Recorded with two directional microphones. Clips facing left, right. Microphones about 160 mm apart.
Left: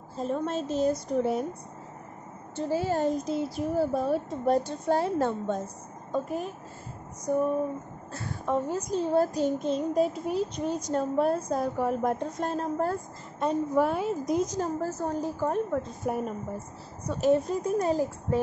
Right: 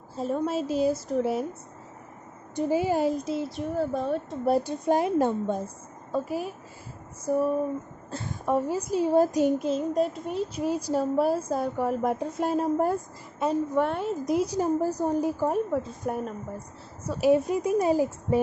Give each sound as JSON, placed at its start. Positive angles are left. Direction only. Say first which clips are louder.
{"t": 0.1, "sound": "a woman's voice", "louder": "right 2 dB", "side_deg": -5}
{"t": 2.5, "sound": "a woman's voice", "louder": "right 3 dB", "side_deg": -15}
{"t": 3.2, "sound": "a woman's voice", "louder": "left 1 dB", "side_deg": 0}
{"t": 8.1, "sound": "a sound", "louder": "right 2 dB", "side_deg": -25}
{"t": 8.5, "sound": "a woman's voice", "louder": "right 2 dB", "side_deg": -10}
{"t": 9.7, "sound": "a woman's voice", "louder": "even", "side_deg": 0}
{"t": 13.4, "sound": "a woman's voice", "louder": "even", "side_deg": 0}